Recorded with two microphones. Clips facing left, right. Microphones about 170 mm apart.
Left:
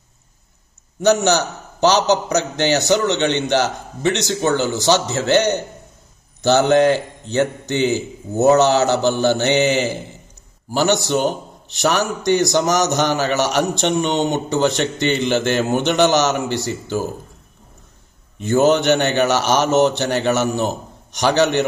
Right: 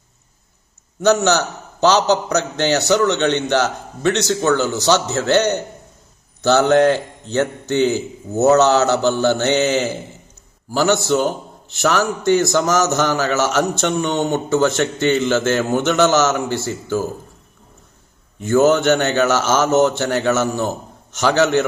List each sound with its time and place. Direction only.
1.0 s a man's voice: 15° left (ahead or behind)
18.4 s a man's voice: 20° left (ahead or behind)